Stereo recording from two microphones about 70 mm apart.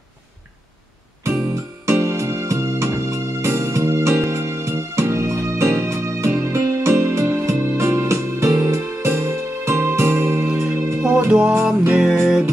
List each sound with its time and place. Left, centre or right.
1.5 s music: right
10.4 s music: right